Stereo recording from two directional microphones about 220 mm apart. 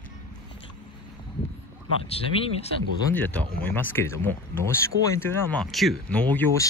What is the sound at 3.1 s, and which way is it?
Speech, 5° left (ahead or behind).